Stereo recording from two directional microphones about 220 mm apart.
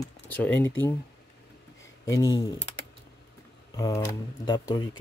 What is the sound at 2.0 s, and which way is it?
Speech, 15° left (ahead or behind).